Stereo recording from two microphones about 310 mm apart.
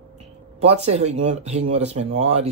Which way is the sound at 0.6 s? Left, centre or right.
Centre.